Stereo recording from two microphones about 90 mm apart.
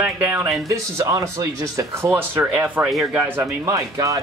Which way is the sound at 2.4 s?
15° right (ahead or behind).